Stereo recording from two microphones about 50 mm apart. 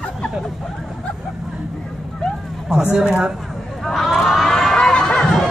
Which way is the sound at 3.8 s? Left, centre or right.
Centre.